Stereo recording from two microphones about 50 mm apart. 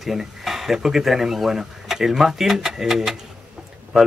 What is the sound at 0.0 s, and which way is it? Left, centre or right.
Speech, centre.